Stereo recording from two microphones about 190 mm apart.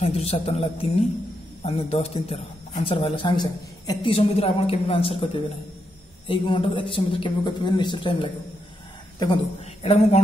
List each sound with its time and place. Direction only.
0.0 s a man's voice: 35° left (ahead or behind)